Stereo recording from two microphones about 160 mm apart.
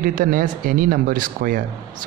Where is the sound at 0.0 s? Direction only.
60° right (ahead or behind).